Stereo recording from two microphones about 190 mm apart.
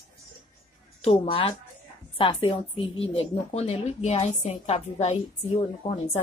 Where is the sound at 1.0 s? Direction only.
30° left (ahead or behind).